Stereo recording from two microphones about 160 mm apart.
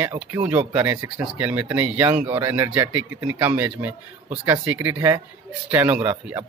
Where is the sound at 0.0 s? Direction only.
15° right (ahead or behind).